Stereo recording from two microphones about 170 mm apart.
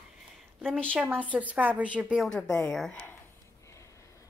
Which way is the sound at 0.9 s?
10° right (ahead or behind).